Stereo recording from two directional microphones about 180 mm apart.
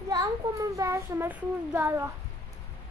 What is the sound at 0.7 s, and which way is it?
A child's voice, 15° right (ahead or behind).